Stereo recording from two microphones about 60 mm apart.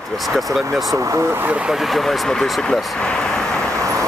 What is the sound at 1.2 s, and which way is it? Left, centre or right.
Speech, right.